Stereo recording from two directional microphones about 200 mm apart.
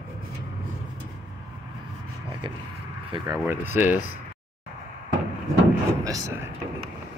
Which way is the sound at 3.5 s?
10° right (ahead or behind).